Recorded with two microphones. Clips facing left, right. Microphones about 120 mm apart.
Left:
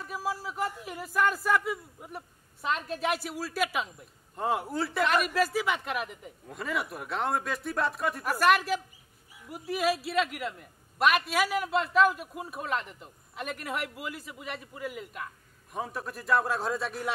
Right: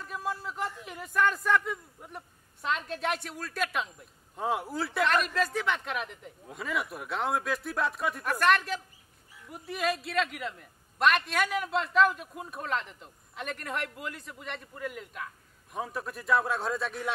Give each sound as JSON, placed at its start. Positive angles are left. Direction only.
{"t": 0.0, "sound": "a man's voice", "side_deg": 5}